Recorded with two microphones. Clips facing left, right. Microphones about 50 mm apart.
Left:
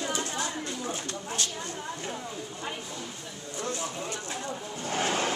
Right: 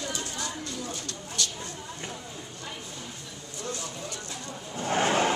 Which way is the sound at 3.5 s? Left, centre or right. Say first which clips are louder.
Left 3 dB; left.